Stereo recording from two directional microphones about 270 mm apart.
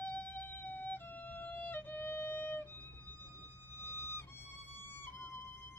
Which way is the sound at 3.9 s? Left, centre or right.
Centre.